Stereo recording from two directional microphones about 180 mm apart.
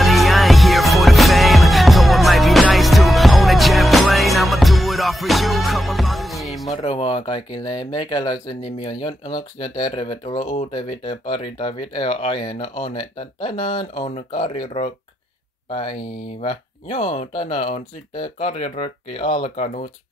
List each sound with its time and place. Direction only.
0.0 s music: centre (ahead or behind)
6.7 s speech: 25° left (ahead or behind)